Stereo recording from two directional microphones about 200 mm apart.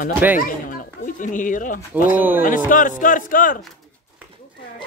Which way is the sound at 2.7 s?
40° left (ahead or behind).